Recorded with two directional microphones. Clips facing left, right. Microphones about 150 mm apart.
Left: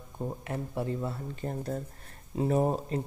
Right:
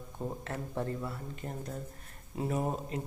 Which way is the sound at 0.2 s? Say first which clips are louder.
Left 3 dB; 10° left (ahead or behind).